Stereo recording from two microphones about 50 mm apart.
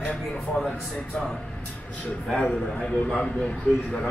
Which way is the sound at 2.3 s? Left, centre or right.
Left.